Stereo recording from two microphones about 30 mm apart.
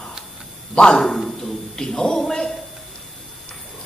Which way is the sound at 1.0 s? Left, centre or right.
Centre.